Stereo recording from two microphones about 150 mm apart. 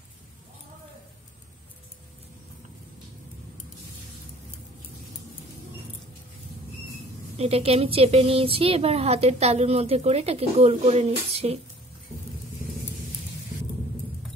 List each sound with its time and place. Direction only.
7.3 s a woman's voice: 40° right (ahead or behind)